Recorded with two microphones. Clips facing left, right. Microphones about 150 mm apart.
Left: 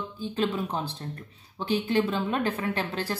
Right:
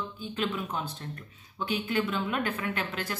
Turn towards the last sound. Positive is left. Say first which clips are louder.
# left 4 dB
turn(degrees=35)  # may be behind; listen again after turning